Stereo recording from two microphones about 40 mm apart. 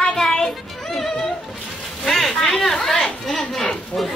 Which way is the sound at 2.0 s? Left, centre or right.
Centre.